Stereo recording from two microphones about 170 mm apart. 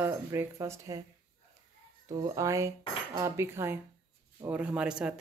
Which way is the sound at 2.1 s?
20° right (ahead or behind).